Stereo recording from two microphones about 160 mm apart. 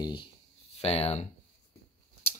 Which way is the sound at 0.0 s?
30° left (ahead or behind).